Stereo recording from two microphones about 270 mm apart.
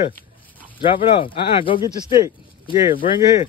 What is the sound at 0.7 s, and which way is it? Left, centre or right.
A man's voice, centre.